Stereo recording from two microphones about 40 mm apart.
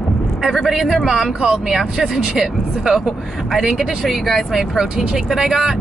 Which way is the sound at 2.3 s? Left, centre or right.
Centre.